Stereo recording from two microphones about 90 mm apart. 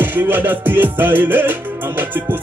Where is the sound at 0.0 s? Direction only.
20° right (ahead or behind).